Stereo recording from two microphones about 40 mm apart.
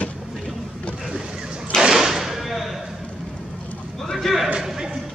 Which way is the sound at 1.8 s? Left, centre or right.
Centre.